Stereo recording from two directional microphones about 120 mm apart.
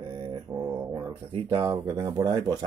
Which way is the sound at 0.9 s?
35° right (ahead or behind).